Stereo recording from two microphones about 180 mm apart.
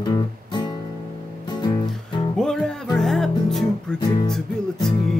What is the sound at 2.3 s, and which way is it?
Music, 5° left (ahead or behind).